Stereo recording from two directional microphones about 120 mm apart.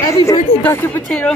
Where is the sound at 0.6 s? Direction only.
15° left (ahead or behind).